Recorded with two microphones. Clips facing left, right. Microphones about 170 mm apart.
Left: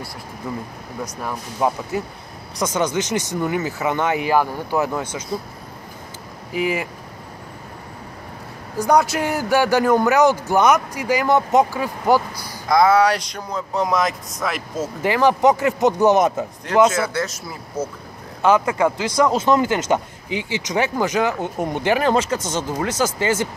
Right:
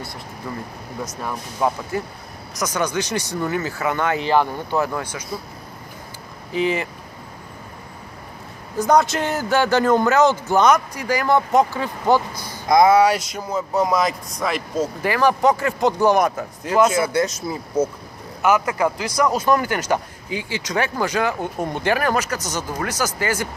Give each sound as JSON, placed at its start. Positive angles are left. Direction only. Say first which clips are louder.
{"t": 1.0, "sound": "a man's voice", "louder": "left 1 dB", "side_deg": 15}
{"t": 6.5, "sound": "a man's voice", "louder": "right 1 dB", "side_deg": 10}
{"t": 8.7, "sound": "a man's voice", "louder": "even", "side_deg": 10}
{"t": 12.6, "sound": "speech", "louder": "right 1 dB", "side_deg": -15}
{"t": 15.0, "sound": "speech", "louder": "left 3 dB", "side_deg": 20}
{"t": 16.9, "sound": "speech", "louder": "right 3 dB", "side_deg": -15}
{"t": 18.4, "sound": "speech", "louder": "left 2 dB", "side_deg": 30}